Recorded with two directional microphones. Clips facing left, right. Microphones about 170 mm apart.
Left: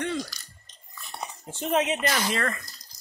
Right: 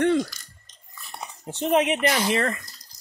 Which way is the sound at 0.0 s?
55° right (ahead or behind).